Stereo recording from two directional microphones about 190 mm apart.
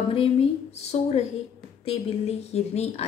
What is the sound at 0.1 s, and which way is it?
A woman's voice, 30° left (ahead or behind).